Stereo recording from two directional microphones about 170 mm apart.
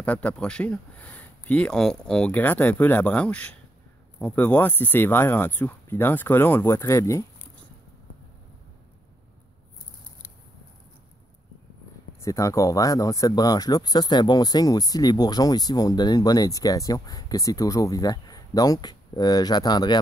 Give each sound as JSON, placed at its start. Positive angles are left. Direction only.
{"t": 0.0, "sound": "speech", "side_deg": 10}
{"t": 12.2, "sound": "speech", "side_deg": 20}